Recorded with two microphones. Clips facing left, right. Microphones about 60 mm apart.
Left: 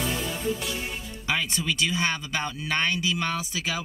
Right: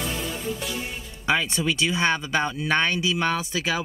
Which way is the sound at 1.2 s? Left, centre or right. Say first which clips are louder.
Right 5 dB; right.